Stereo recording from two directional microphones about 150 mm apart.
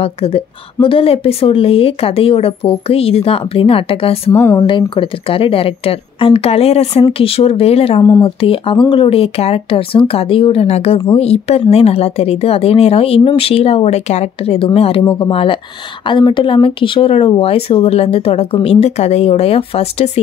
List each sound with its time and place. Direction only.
0.0 s a woman's voice: 40° left (ahead or behind)
4.3 s speech: 20° left (ahead or behind)
4.6 s a woman's voice: 35° left (ahead or behind)
8.0 s speech: 25° left (ahead or behind)
8.4 s a woman's voice: 35° left (ahead or behind)